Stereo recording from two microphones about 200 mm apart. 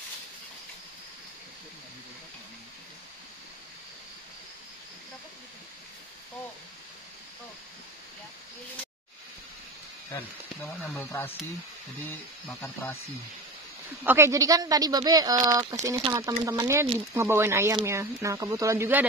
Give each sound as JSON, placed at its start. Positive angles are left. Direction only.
{"t": 10.1, "sound": "speech", "side_deg": 10}
{"t": 14.0, "sound": "speech", "side_deg": -15}